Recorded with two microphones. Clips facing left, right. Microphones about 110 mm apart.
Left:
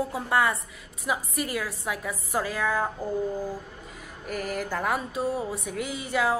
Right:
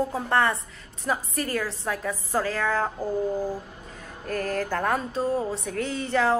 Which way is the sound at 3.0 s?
15° right (ahead or behind).